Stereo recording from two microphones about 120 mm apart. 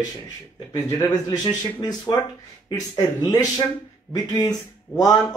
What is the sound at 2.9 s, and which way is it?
Speech, 30° left (ahead or behind).